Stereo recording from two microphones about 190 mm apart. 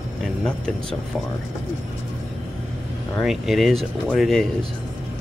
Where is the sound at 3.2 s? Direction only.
Centre (ahead or behind).